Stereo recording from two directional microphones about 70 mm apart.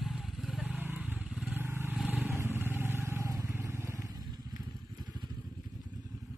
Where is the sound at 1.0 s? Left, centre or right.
Centre.